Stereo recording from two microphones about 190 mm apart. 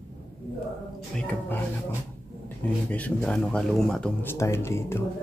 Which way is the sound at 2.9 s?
5° left (ahead or behind).